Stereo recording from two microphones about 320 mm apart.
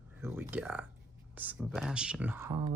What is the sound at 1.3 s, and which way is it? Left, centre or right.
Speech, centre.